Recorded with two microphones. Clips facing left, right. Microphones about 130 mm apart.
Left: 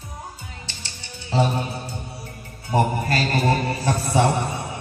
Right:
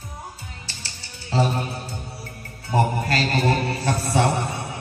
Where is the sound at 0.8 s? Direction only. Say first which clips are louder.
Left 2 dB; 20° left (ahead or behind).